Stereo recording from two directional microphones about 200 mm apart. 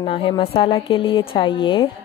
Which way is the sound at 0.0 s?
25° left (ahead or behind).